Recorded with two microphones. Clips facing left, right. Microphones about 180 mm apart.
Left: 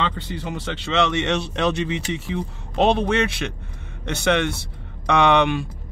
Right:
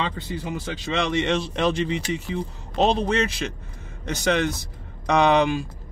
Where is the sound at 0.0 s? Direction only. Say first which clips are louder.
Left 2 dB; 70° left (ahead or behind).